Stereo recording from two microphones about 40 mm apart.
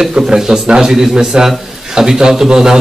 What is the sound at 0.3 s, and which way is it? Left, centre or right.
A man's voice, centre.